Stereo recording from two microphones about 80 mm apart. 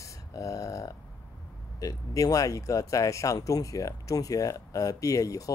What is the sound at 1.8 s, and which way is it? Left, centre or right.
Speech, left.